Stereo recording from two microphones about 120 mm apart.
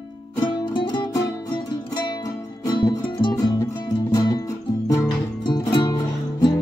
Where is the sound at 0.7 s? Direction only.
40° left (ahead or behind).